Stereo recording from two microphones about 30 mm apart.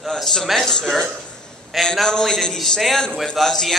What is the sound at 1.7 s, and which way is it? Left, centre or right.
Speech, centre.